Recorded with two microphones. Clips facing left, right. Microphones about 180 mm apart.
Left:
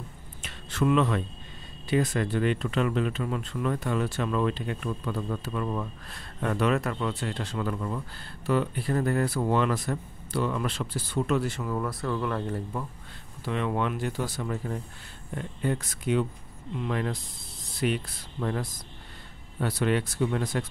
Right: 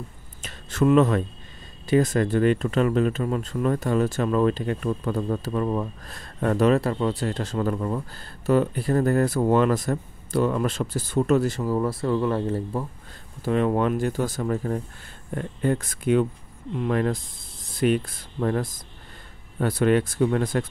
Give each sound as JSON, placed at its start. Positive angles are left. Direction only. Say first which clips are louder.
{"t": 0.4, "sound": "a sound", "louder": "right 5 dB", "side_deg": -45}
{"t": 1.9, "sound": "speech", "louder": "right 6 dB", "side_deg": -45}
{"t": 13.4, "sound": "speech", "louder": "right 7 dB", "side_deg": -45}